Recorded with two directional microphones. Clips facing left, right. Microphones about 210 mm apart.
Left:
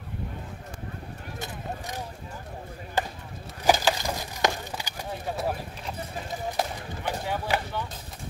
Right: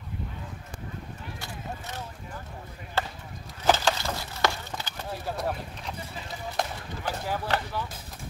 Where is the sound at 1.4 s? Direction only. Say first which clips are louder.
Left 5 dB; 15° left (ahead or behind).